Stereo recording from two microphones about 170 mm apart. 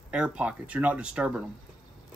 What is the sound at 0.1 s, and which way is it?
Speech, 5° right (ahead or behind).